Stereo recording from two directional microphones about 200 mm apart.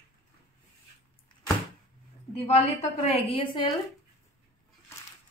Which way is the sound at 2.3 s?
30° left (ahead or behind).